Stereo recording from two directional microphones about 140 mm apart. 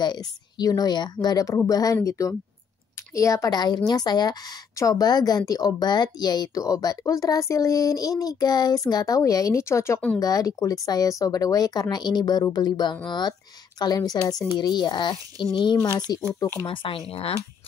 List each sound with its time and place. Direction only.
0.0 s a woman's voice: 30° left (ahead or behind); by 17.4 s 45° left (ahead or behind)